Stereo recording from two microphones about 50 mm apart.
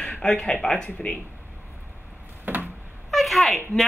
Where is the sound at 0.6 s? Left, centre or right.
Centre.